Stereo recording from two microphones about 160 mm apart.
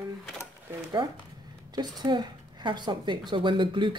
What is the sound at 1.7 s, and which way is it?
A woman's voice, 25° right (ahead or behind).